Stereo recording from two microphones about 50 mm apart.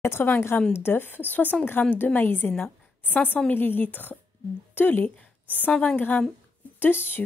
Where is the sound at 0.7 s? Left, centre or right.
Left.